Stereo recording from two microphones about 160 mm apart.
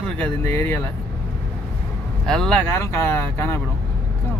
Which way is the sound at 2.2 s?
5° left (ahead or behind).